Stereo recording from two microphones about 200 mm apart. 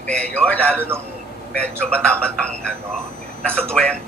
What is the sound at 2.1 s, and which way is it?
Speech, 5° left (ahead or behind).